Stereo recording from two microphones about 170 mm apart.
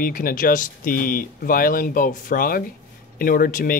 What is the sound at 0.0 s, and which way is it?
Speech, 55° left (ahead or behind).